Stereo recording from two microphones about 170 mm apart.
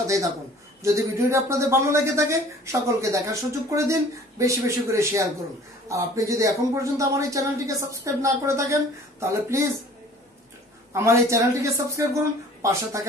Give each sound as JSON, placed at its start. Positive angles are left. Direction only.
{"t": 0.0, "sound": "a man's voice", "side_deg": -20}
{"t": 10.9, "sound": "speech", "side_deg": -15}